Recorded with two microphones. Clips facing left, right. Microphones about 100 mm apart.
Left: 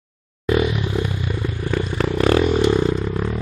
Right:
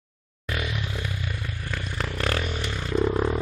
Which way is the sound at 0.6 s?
20° left (ahead or behind).